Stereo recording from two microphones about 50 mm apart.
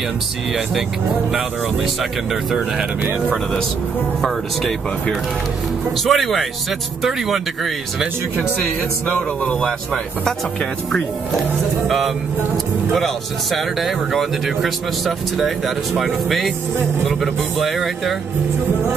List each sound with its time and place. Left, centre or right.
6.0 s speech: centre
9.4 s speech: left
12.9 s speech: centre